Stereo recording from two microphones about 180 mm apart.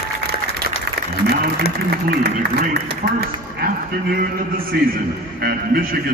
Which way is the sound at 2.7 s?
60° right (ahead or behind).